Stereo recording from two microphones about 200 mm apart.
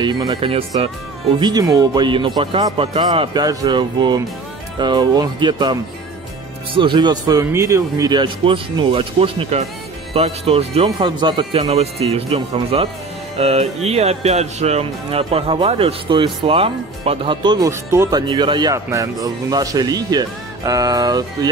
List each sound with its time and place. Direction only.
0.0 s speech: 20° right (ahead or behind)